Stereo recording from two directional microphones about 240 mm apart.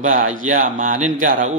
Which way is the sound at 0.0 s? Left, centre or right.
Right.